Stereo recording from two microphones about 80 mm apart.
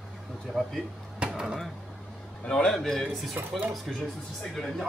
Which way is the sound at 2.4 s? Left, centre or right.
Centre.